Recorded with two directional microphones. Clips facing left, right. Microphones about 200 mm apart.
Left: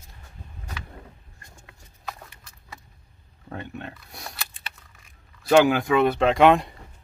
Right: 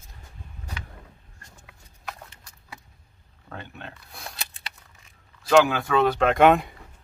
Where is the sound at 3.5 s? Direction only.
20° left (ahead or behind).